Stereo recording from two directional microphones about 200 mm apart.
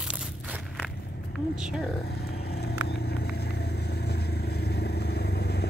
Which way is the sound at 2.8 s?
55° left (ahead or behind).